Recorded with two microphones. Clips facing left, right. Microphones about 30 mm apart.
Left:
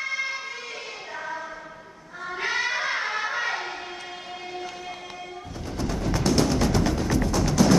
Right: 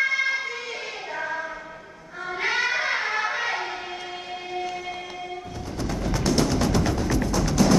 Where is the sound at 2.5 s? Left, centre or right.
Centre.